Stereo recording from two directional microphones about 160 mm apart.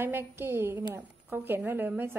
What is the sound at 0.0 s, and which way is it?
A woman's voice, 15° right (ahead or behind).